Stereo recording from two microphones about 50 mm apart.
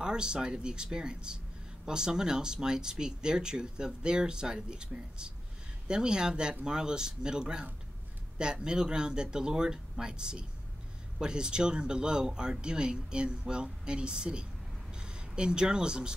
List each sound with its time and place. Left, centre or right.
0.0 s speech: centre